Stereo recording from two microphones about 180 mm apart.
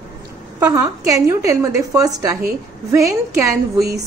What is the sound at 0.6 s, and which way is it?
A woman's voice, 15° right (ahead or behind).